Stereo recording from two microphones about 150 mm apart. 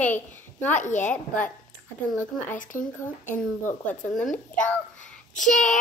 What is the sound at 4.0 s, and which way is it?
Speech, 5° left (ahead or behind).